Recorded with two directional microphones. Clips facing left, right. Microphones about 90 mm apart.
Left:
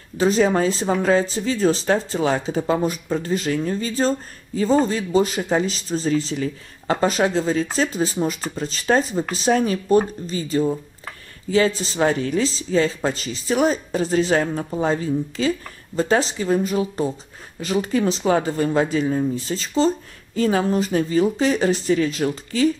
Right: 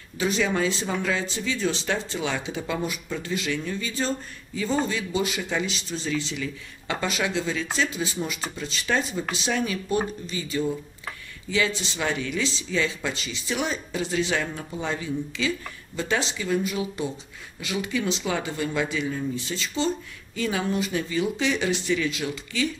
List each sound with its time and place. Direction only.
0.2 s speech: 40° left (ahead or behind)